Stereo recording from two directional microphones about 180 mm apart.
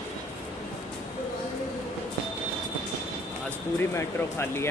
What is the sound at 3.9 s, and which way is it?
Speech, 15° left (ahead or behind).